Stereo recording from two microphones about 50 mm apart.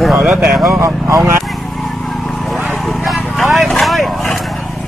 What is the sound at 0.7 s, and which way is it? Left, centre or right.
Speech, right.